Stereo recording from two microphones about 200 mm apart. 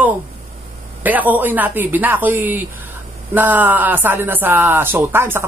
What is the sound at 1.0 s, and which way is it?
Speech, 10° right (ahead or behind).